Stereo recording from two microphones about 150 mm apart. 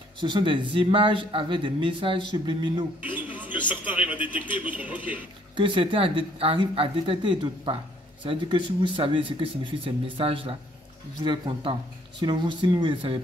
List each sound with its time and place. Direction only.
0.2 s speech: 35° right (ahead or behind)
3.2 s a man's voice: 10° right (ahead or behind)
5.6 s speech: 35° right (ahead or behind)